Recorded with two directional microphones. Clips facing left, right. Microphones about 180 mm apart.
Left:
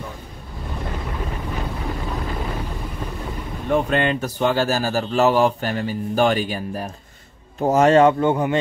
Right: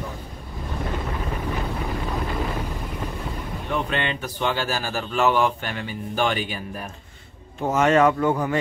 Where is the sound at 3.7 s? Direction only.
45° left (ahead or behind).